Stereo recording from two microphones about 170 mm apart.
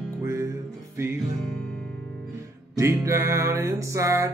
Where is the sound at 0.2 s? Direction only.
15° right (ahead or behind).